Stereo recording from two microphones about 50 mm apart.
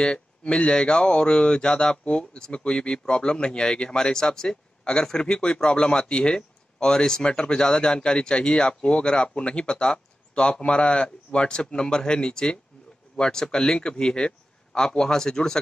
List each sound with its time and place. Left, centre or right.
0.0 s speech: left